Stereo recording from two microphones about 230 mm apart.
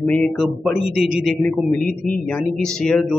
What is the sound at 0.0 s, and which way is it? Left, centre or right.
Speech, centre.